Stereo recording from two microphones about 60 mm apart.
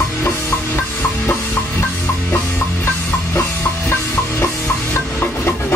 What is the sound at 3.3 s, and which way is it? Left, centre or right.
Music, left.